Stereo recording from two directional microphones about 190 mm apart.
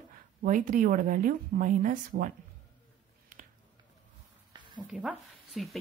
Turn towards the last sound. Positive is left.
turn(degrees=0)  # may be behind; listen again after turning